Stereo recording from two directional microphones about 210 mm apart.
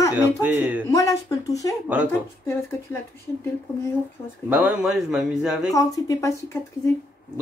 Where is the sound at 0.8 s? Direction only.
15° left (ahead or behind).